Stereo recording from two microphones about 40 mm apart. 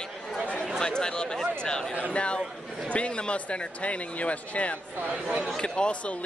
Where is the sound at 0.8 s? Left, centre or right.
Centre.